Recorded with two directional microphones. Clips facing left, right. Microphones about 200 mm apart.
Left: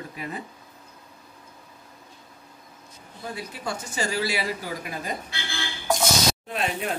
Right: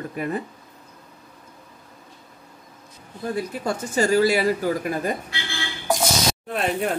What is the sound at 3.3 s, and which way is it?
Speech, 45° right (ahead or behind).